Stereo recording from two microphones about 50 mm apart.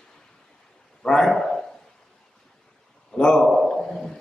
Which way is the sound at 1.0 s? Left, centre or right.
Centre.